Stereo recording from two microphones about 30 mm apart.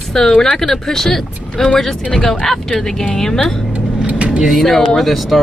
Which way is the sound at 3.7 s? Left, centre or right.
Right.